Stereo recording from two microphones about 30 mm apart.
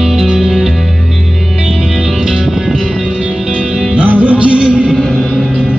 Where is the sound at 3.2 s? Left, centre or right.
Centre.